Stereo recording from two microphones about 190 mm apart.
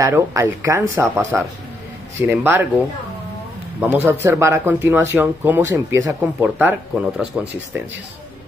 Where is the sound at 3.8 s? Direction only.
10° right (ahead or behind).